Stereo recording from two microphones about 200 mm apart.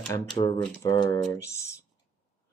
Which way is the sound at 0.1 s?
20° left (ahead or behind).